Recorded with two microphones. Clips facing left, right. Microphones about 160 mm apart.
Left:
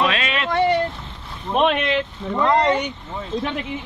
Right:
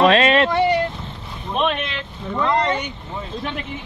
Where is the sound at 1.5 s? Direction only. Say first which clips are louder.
Left 3 dB; 10° left (ahead or behind).